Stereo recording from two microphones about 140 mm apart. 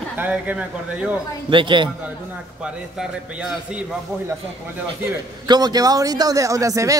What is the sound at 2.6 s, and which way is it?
A man's voice, 5° right (ahead or behind).